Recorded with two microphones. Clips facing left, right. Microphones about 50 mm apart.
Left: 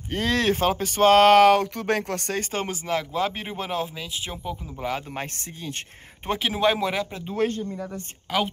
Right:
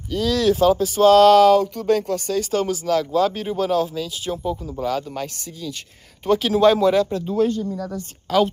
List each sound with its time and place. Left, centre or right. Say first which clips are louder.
0.1 s speech: right 4 dB; left
2.5 s speech: right 8 dB; left
6.2 s speech: right 7 dB; left
7.3 s speech: right 4 dB; left
7.7 s speech: right 5 dB; left